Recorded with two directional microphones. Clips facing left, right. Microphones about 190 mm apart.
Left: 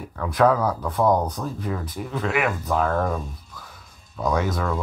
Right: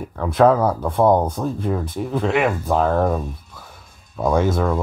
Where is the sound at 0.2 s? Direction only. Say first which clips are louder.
Right 4 dB; 25° right (ahead or behind).